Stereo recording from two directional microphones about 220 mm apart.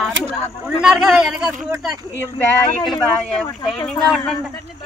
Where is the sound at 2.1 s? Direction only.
10° left (ahead or behind).